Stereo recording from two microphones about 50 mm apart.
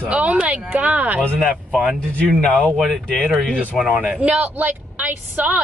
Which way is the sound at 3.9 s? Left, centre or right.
Centre.